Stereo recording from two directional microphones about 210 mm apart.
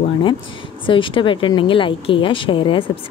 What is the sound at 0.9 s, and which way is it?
A woman's voice, 25° left (ahead or behind).